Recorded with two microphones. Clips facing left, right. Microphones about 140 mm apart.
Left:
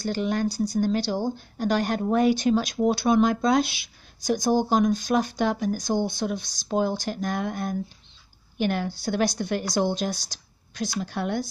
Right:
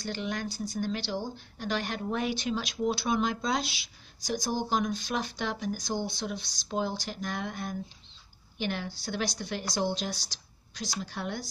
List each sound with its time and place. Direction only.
0.0 s speech: 40° left (ahead or behind); by 11.4 s 55° left (ahead or behind)